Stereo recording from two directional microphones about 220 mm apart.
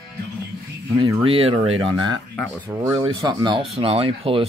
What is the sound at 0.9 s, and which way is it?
Speech, 25° right (ahead or behind).